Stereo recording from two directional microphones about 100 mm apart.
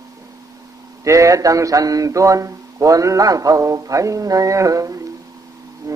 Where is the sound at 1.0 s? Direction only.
35° right (ahead or behind).